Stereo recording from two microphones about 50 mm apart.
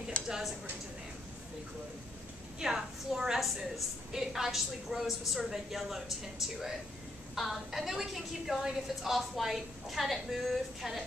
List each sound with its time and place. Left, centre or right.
0.2 s a sound: left
2.6 s a woman's voice: centre
7.3 s a woman's voice: centre